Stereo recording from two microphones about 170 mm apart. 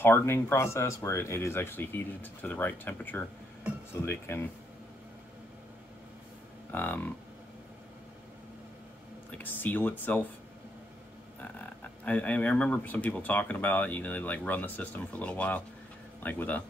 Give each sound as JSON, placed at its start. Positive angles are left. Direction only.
{"t": 0.0, "sound": "speech", "side_deg": 15}
{"t": 6.7, "sound": "speech", "side_deg": 10}
{"t": 9.4, "sound": "speech", "side_deg": 10}
{"t": 11.4, "sound": "speech", "side_deg": 10}